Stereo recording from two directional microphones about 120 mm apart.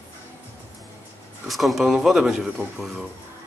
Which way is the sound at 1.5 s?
Centre (ahead or behind).